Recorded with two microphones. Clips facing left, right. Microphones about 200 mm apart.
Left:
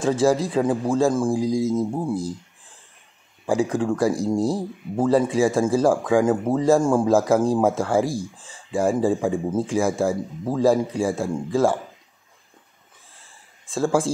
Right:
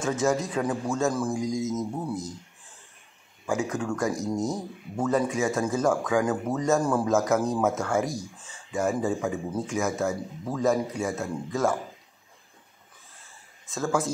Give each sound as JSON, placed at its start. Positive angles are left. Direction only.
{"t": 0.0, "sound": "a man's voice", "side_deg": 30}
{"t": 3.4, "sound": "a man's voice", "side_deg": 30}
{"t": 13.7, "sound": "a man's voice", "side_deg": 30}